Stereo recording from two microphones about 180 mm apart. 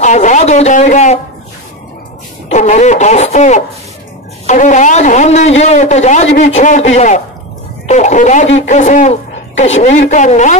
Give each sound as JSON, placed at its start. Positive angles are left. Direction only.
{"t": 0.0, "sound": "a man's voice", "side_deg": 40}
{"t": 2.5, "sound": "a man's voice", "side_deg": 40}